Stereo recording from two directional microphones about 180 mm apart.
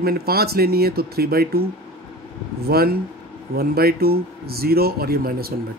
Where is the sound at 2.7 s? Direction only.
60° right (ahead or behind).